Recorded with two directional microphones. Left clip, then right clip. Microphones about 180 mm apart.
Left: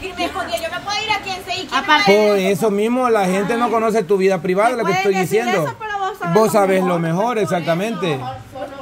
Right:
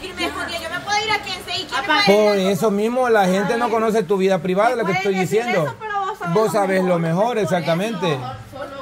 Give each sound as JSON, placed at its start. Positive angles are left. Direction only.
{"t": 2.0, "sound": "a man's voice", "side_deg": 5}
{"t": 6.3, "sound": "speech", "side_deg": 30}
{"t": 6.9, "sound": "a man's voice", "side_deg": 10}